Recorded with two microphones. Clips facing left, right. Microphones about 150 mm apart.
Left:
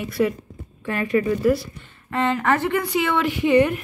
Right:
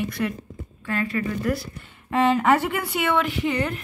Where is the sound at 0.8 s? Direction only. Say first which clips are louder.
Left 5 dB; 15° left (ahead or behind).